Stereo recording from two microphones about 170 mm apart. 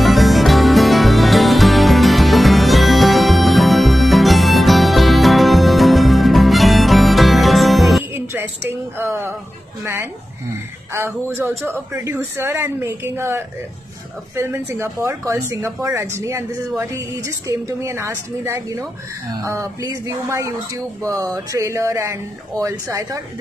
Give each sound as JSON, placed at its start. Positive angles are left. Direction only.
{"t": 0.0, "sound": "music", "side_deg": 0}
{"t": 8.1, "sound": "a sound", "side_deg": -15}
{"t": 10.9, "sound": "speech", "side_deg": -15}